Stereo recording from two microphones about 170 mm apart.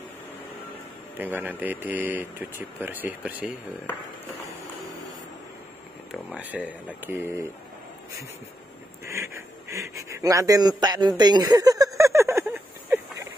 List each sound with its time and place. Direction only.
1.1 s speech: 10° right (ahead or behind)
6.3 s speech: 10° right (ahead or behind)
9.0 s speech: 15° right (ahead or behind)
12.0 s a sound: 15° right (ahead or behind)